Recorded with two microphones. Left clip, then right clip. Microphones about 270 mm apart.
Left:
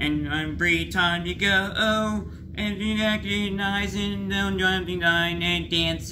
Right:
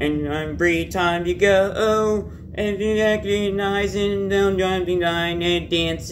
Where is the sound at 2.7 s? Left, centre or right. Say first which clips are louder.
Right 7 dB; centre.